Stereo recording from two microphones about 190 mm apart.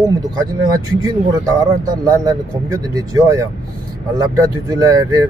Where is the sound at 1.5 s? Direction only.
20° right (ahead or behind).